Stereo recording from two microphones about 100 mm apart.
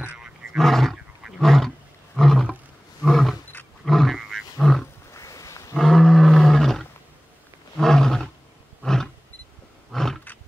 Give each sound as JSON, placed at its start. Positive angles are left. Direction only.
{"t": 0.0, "sound": "roar", "side_deg": -10}
{"t": 3.8, "sound": "roaring cats", "side_deg": 0}
{"t": 5.1, "sound": "a sound", "side_deg": 30}
{"t": 5.8, "sound": "roar", "side_deg": 5}
{"t": 8.8, "sound": "wild animals", "side_deg": 5}
{"t": 9.8, "sound": "roar", "side_deg": 5}